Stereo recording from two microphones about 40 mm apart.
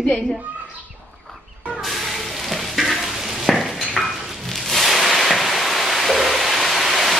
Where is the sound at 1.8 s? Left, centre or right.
Centre.